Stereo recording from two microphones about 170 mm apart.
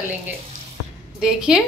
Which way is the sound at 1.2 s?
5° right (ahead or behind).